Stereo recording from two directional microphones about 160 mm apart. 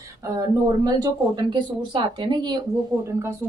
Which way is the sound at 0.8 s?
25° right (ahead or behind).